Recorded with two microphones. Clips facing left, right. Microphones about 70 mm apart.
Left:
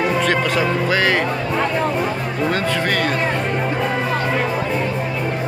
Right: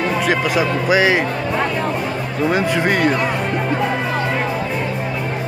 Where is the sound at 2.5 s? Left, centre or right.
Centre.